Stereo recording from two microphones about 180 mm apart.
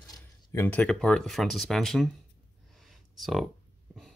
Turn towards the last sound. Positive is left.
turn(degrees=0)  # may be behind; listen again after turning